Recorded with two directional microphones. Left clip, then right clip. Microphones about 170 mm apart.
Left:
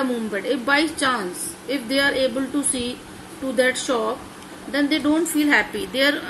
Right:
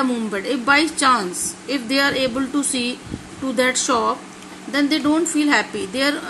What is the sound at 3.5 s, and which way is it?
A woman's voice, 35° right (ahead or behind).